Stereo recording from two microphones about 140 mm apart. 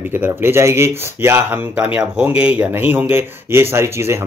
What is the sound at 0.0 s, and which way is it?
Speech, 15° right (ahead or behind).